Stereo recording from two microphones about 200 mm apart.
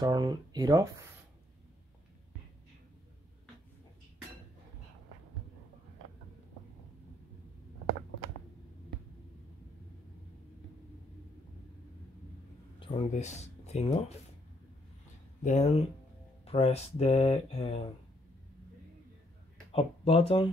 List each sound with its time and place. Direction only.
0.0 s speech: 20° right (ahead or behind)
12.8 s speech: 30° left (ahead or behind)
15.4 s speech: 35° left (ahead or behind)
19.7 s speech: 30° left (ahead or behind)